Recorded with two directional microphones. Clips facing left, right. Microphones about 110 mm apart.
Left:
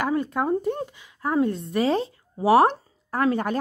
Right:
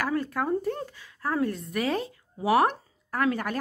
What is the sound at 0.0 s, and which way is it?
Speech, 20° left (ahead or behind).